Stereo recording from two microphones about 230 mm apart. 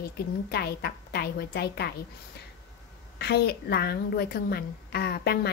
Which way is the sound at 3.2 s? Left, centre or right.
Left.